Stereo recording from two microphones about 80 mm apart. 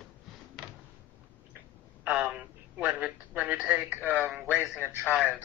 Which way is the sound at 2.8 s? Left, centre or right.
Centre.